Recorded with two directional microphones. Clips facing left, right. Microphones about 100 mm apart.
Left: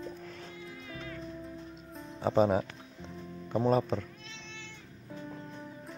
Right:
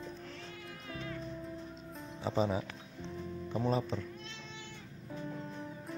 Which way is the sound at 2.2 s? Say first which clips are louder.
Left 7 dB; 50° left (ahead or behind).